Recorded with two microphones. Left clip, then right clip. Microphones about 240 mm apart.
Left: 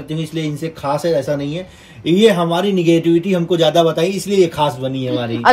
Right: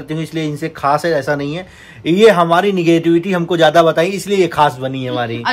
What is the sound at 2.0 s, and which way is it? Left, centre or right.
Speech, right.